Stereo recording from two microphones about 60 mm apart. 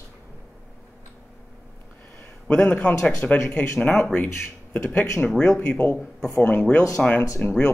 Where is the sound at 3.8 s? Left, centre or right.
Left.